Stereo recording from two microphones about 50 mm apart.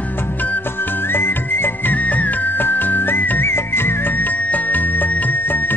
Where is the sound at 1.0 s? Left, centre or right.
Left.